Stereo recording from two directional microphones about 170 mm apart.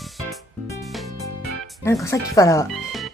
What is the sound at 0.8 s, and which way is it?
Music, centre (ahead or behind).